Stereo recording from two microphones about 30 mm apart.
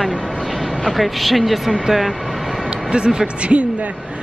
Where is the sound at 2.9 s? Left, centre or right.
Right.